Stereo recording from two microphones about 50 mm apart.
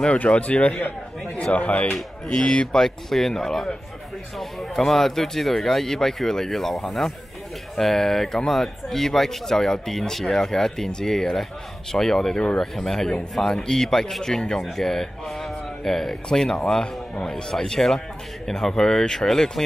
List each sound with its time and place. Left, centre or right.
0.3 s a man's voice: left
0.7 s a man's voice: left
1.4 s a man's voice: left
2.2 s speech: centre
2.8 s speech: centre